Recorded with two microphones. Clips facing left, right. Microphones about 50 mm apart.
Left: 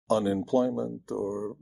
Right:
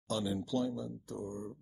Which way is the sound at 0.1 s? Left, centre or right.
Left.